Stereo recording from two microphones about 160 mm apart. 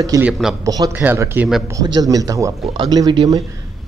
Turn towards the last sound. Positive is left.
turn(degrees=-25)  # may be behind; listen again after turning